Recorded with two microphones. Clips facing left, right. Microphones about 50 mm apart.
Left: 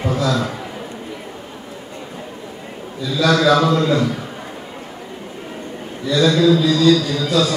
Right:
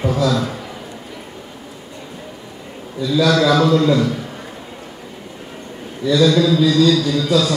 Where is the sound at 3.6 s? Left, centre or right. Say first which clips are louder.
Right 2 dB; centre.